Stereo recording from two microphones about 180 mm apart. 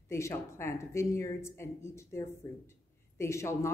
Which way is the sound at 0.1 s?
15° left (ahead or behind).